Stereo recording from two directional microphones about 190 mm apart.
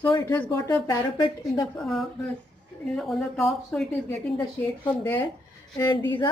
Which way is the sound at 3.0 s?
Centre (ahead or behind).